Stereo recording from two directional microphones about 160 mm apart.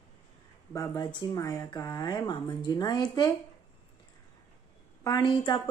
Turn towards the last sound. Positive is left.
turn(degrees=30)  # may be behind; listen again after turning